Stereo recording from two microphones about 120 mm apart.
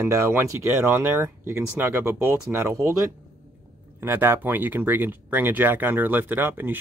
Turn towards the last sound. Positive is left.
turn(degrees=-15)  # may be behind; listen again after turning